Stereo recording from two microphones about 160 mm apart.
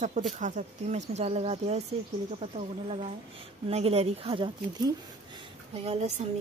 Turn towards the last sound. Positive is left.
turn(degrees=-40)  # may be behind; listen again after turning